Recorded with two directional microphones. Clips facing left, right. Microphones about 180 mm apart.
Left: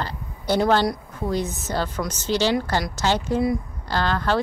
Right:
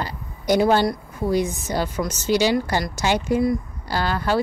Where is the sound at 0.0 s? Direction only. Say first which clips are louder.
Right 1 dB; 10° right (ahead or behind).